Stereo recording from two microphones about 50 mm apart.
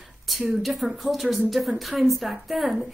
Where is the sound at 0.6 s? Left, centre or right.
Centre.